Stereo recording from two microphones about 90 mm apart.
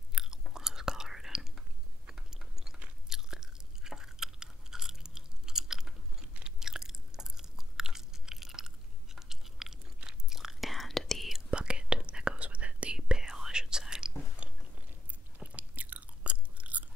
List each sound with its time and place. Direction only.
0.1 s chewing: 5° right (ahead or behind)
9.9 s whispering: 5° right (ahead or behind)
14.4 s biting: 15° right (ahead or behind)
15.3 s chewing: 15° right (ahead or behind)